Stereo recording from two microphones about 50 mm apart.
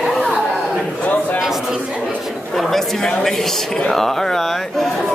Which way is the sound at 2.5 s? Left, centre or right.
Centre.